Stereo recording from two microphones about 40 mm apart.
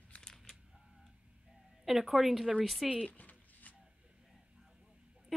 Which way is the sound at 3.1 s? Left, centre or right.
Left.